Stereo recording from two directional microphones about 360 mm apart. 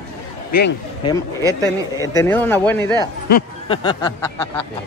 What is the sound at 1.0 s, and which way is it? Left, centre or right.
Speech, centre.